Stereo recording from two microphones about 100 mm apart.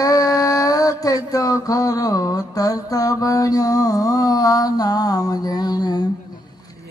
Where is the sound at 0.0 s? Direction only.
35° left (ahead or behind).